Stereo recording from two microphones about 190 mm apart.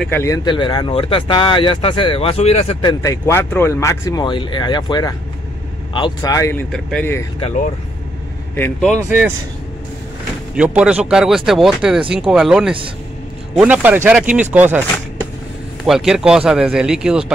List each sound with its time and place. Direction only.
0.0 s speech: 10° left (ahead or behind)
6.7 s speech: 5° left (ahead or behind)
8.5 s speech: 5° left (ahead or behind)
10.5 s speech: 5° right (ahead or behind)